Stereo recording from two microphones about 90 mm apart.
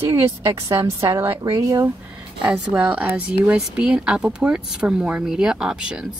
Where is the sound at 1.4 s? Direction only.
35° right (ahead or behind).